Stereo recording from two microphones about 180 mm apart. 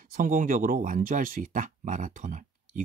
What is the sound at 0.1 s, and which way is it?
Speech, 50° right (ahead or behind).